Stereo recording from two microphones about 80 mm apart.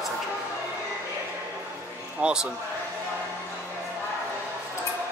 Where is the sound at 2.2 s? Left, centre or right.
Centre.